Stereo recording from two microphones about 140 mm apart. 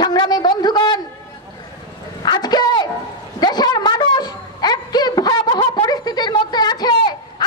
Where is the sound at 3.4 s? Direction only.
30° left (ahead or behind).